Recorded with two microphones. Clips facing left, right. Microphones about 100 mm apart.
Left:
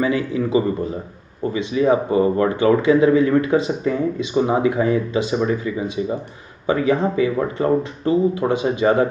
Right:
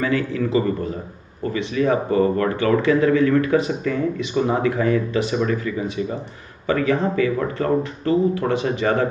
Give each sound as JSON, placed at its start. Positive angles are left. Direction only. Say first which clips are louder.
{"t": 0.0, "sound": "speech", "louder": "left 1 dB", "side_deg": 20}